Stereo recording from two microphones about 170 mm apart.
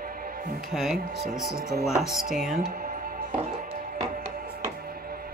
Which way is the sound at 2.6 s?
55° right (ahead or behind).